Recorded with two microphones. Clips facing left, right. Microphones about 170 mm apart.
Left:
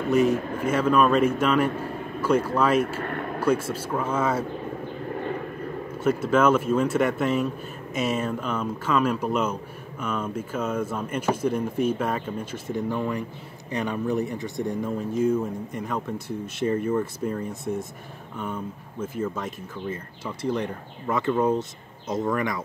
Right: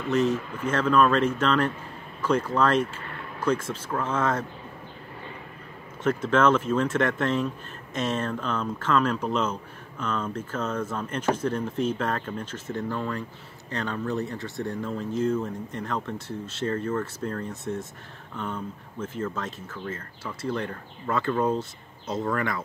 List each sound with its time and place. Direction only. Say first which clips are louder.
0.1 s speech: left 3 dB; 10° left (ahead or behind)
3.0 s vehicle: left 9 dB; 55° left (ahead or behind)
3.4 s speech: left 2 dB; 10° left (ahead or behind)
5.1 s vehicle: left 13 dB; 55° left (ahead or behind)
6.0 s speech: left 1 dB; 10° left (ahead or behind)